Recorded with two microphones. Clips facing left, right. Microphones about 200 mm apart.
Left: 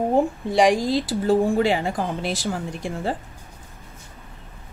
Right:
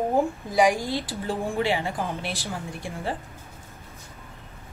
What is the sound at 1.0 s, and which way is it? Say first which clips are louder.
Speech: left 10 dB; 40° left (ahead or behind).